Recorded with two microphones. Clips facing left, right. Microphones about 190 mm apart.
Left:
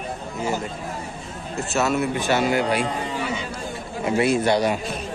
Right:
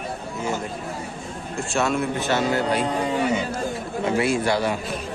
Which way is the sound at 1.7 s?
5° left (ahead or behind).